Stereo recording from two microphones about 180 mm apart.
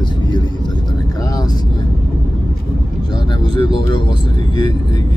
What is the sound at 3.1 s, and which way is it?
Speech, 25° left (ahead or behind).